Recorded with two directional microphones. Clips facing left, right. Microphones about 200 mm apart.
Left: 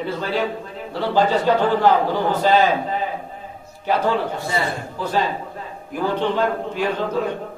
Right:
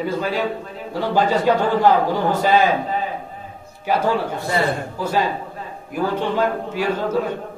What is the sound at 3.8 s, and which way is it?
A man's voice, 10° right (ahead or behind).